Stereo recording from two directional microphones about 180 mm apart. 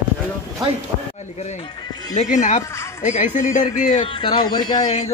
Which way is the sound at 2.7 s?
15° left (ahead or behind).